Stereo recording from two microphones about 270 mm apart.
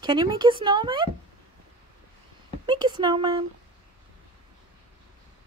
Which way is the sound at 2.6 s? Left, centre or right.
Centre.